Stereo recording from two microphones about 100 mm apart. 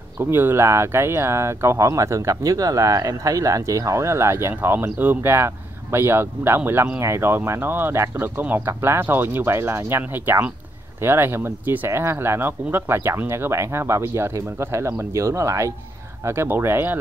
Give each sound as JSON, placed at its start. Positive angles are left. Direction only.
{"t": 0.2, "sound": "speech", "side_deg": -20}